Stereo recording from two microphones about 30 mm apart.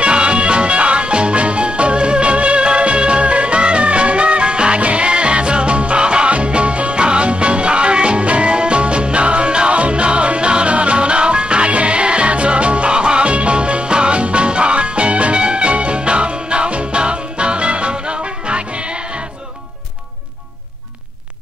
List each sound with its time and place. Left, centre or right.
0.0 s music: right